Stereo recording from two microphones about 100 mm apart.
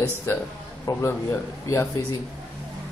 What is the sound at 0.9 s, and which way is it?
A man's voice, 25° left (ahead or behind).